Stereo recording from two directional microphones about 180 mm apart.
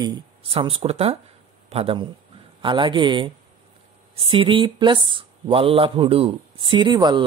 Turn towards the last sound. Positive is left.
turn(degrees=-25)  # may be behind; listen again after turning